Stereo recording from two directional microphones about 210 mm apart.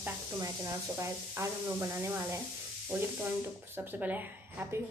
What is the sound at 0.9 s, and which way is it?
Speech, 15° right (ahead or behind).